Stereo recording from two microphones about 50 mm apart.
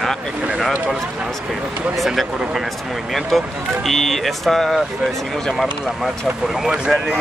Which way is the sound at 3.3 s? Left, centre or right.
Centre.